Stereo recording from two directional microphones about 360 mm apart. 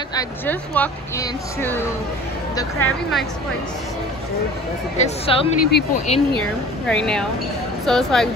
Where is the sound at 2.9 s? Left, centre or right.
Centre.